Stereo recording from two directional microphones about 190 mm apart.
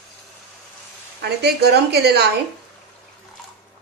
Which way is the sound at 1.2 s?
60° right (ahead or behind).